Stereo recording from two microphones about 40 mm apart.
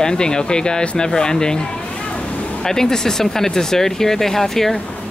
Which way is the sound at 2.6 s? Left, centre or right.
Centre.